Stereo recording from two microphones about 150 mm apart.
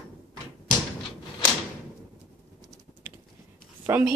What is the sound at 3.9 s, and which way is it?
Speech, 15° right (ahead or behind).